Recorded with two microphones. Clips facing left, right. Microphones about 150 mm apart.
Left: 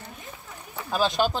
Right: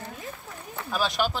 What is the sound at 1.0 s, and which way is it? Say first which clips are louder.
Speech: left 3 dB; 35° left (ahead or behind).